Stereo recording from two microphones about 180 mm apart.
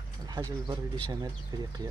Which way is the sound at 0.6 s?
25° right (ahead or behind).